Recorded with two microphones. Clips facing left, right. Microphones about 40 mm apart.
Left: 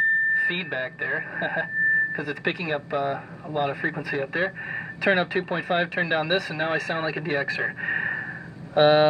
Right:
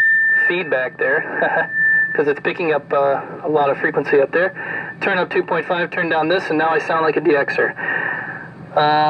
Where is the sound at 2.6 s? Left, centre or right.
Centre.